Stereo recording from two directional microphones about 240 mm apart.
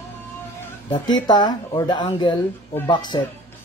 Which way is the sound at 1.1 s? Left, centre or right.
Centre.